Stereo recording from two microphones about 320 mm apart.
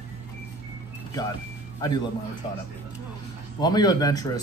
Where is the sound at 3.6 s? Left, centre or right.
Centre.